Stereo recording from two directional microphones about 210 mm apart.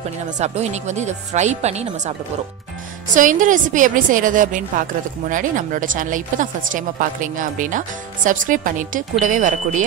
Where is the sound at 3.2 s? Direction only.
40° right (ahead or behind).